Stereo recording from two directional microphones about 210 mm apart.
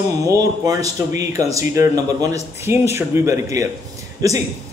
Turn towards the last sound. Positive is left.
turn(degrees=-15)  # may be behind; listen again after turning